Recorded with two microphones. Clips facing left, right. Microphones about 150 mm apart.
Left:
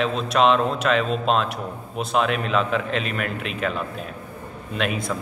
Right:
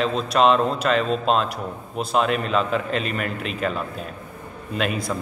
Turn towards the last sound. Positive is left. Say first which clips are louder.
# right 1 dB
turn(degrees=0)  # may be behind; listen again after turning